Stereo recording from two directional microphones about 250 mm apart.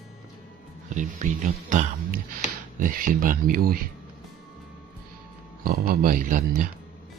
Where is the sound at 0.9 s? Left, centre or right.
Right.